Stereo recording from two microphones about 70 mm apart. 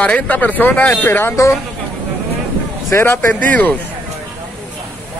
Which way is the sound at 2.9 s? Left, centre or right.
Left.